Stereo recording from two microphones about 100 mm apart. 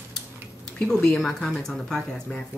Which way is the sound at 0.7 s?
5° left (ahead or behind).